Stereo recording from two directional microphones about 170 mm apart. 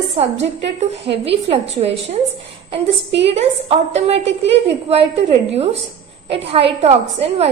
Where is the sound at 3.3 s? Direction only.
35° right (ahead or behind).